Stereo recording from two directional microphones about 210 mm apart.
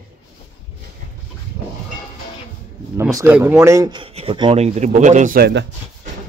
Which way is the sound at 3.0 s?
15° right (ahead or behind).